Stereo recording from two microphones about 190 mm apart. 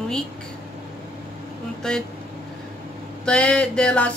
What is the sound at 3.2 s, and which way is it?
Speech, 5° left (ahead or behind).